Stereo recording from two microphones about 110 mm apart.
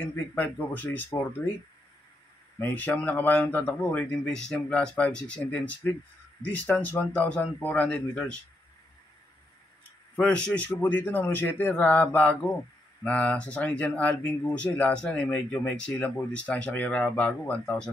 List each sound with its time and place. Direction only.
0.0 s speech: 15° left (ahead or behind)
2.6 s speech: 15° left (ahead or behind)
10.1 s speech: 10° left (ahead or behind)